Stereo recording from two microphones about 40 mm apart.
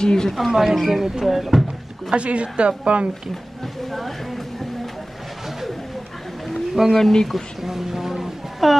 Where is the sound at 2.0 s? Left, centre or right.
Right.